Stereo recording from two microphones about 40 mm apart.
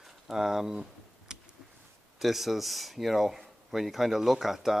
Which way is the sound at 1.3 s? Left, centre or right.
Right.